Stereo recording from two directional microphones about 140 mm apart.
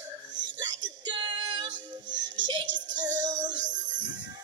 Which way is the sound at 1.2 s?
35° right (ahead or behind).